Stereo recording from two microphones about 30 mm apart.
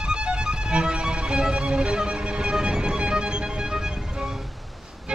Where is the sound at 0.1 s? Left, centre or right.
Right.